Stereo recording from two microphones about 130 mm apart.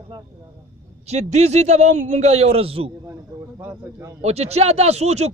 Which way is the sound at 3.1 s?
20° right (ahead or behind).